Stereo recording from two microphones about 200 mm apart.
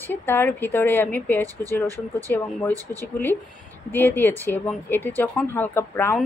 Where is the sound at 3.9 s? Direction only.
10° left (ahead or behind).